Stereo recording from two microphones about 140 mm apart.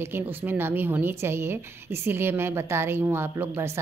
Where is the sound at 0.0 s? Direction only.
15° right (ahead or behind).